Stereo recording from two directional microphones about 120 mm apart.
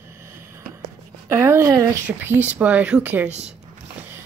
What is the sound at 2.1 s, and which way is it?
Speech, 15° right (ahead or behind).